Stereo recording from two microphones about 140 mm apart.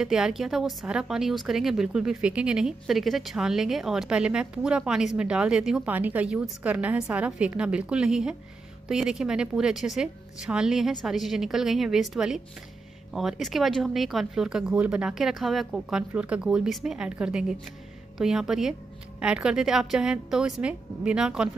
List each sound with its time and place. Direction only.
0.0 s a woman's voice: 5° right (ahead or behind)